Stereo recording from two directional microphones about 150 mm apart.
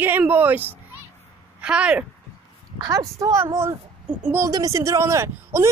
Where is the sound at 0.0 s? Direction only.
10° right (ahead or behind).